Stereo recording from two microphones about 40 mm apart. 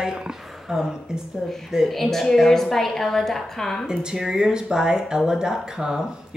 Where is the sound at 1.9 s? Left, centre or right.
Centre.